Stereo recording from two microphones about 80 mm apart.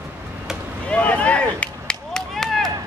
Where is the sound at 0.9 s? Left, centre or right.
Centre.